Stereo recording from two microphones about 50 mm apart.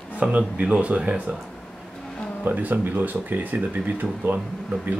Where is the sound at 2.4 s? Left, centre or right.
Right.